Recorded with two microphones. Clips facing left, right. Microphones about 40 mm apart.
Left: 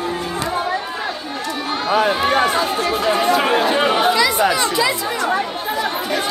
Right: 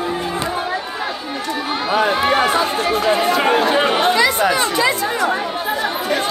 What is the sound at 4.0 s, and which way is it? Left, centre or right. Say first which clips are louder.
Chatter: even; right.